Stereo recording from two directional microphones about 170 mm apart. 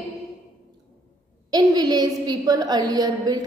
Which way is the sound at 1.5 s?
20° right (ahead or behind).